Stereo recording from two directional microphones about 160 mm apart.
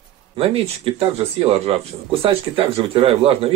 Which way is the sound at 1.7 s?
35° right (ahead or behind).